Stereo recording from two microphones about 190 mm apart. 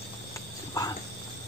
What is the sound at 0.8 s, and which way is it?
Cat, 20° left (ahead or behind).